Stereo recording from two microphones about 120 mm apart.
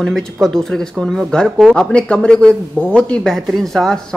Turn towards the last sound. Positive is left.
turn(degrees=0)  # may be behind; listen again after turning